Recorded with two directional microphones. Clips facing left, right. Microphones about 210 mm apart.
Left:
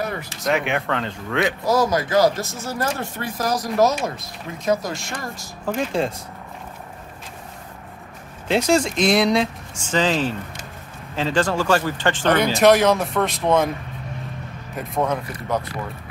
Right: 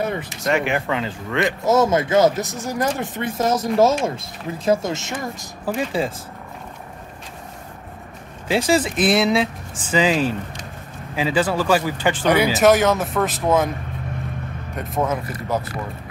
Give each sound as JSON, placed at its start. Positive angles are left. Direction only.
{"t": 0.1, "sound": "a sound", "side_deg": -20}
{"t": 0.4, "sound": "speech", "side_deg": 0}
{"t": 1.7, "sound": "speech", "side_deg": -25}
{"t": 5.7, "sound": "speech", "side_deg": -5}
{"t": 8.5, "sound": "speech", "side_deg": -5}
{"t": 14.8, "sound": "speech", "side_deg": -5}